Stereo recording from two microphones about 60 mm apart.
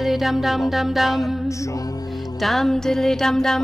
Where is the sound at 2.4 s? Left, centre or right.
Centre.